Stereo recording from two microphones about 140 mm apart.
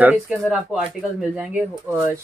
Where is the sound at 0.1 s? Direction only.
5° right (ahead or behind).